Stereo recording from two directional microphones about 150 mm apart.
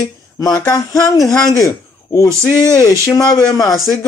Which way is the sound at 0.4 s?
25° left (ahead or behind).